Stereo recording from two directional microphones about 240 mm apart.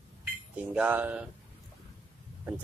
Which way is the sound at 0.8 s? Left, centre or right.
Centre.